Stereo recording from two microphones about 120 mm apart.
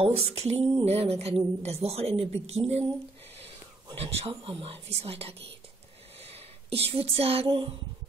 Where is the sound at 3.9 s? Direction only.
55° right (ahead or behind).